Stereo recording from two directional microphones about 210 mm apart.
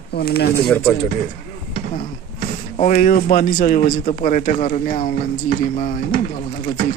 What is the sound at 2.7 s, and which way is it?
Speech, 40° left (ahead or behind).